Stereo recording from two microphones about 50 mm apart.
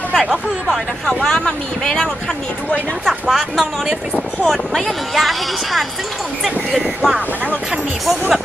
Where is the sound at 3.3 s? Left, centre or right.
Centre.